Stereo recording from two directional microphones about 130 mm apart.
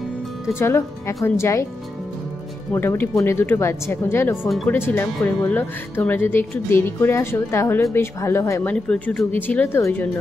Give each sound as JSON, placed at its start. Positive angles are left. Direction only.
{"t": 0.6, "sound": "speech", "side_deg": 20}
{"t": 2.7, "sound": "speech", "side_deg": 15}
{"t": 8.7, "sound": "speech", "side_deg": 10}